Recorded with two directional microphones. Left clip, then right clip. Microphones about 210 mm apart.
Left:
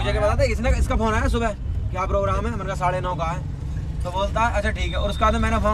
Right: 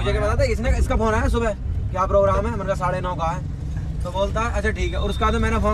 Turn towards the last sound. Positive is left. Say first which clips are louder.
# left 1 dB
turn(degrees=0)  # may be behind; listen again after turning